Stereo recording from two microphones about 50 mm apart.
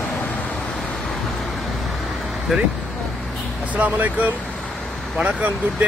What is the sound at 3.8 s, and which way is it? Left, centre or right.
Speech, right.